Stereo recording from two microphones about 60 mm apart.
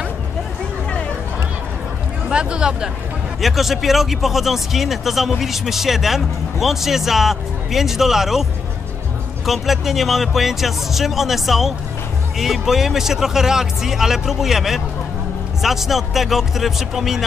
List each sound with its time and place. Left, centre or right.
2.2 s speech: centre
3.3 s speech: centre
9.5 s speech: centre